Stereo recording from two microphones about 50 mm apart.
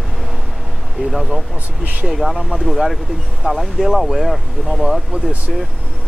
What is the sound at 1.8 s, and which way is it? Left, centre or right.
Speech, right.